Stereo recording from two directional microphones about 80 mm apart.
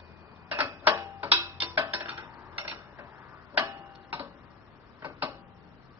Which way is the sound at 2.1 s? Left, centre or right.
Right.